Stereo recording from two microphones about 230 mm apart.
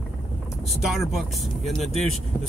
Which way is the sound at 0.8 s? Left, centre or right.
Centre.